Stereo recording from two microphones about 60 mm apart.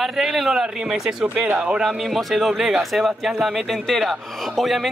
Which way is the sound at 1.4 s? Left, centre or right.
Right.